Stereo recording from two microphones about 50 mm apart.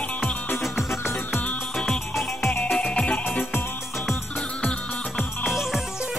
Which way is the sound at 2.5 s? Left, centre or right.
Left.